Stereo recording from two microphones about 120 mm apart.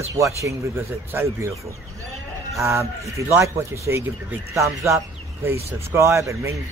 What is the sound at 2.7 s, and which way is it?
Speech, 25° right (ahead or behind).